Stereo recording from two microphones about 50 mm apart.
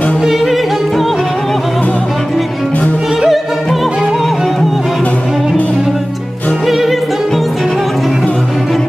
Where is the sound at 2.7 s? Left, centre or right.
Left.